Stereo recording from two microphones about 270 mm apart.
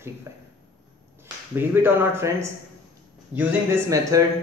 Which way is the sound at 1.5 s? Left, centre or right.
Centre.